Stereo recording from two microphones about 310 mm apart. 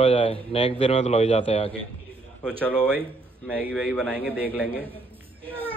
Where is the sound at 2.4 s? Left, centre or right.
Centre.